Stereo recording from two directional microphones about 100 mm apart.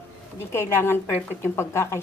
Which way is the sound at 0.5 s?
25° left (ahead or behind).